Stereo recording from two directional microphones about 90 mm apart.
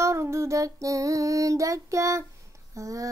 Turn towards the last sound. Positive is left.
turn(degrees=-35)  # may be behind; listen again after turning